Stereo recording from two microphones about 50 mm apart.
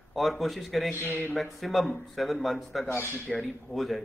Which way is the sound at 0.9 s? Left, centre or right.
Left.